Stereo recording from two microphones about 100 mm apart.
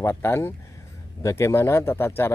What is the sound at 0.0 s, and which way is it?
Speech, 25° left (ahead or behind).